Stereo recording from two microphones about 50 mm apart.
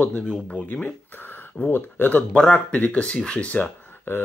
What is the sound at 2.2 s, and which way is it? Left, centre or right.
Speech, left.